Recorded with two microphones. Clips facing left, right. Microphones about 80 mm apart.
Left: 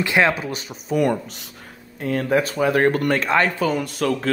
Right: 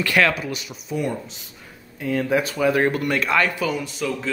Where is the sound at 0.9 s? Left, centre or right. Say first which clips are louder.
Left 6 dB; left.